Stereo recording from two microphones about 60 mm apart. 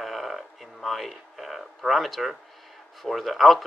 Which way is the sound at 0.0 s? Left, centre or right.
Centre.